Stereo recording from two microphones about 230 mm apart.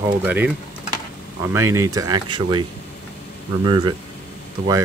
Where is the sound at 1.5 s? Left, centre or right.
Centre.